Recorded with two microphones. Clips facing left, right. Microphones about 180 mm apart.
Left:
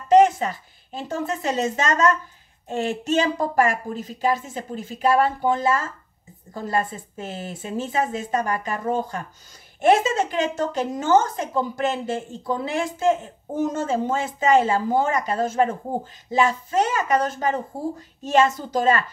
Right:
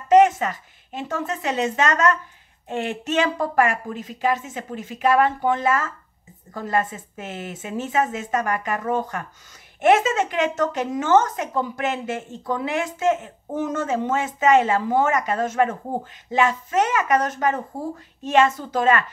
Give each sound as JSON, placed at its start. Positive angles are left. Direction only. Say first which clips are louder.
{"t": 0.1, "sound": "a woman's voice", "louder": "even", "side_deg": 35}